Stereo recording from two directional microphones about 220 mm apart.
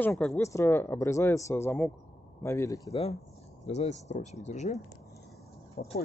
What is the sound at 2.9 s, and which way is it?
Speech, 30° left (ahead or behind).